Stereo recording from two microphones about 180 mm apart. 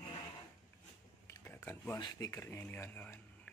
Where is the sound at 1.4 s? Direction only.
10° left (ahead or behind).